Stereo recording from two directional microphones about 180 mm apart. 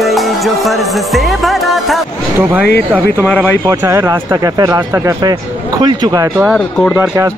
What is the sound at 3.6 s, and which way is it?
Speech, 15° right (ahead or behind).